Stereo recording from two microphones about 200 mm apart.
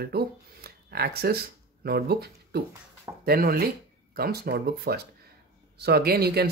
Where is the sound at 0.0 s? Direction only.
50° right (ahead or behind).